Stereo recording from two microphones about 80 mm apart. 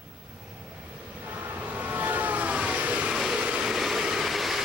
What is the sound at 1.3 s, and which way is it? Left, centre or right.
Vehicle, centre.